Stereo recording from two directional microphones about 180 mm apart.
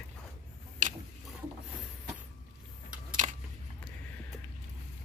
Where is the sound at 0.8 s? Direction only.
45° right (ahead or behind).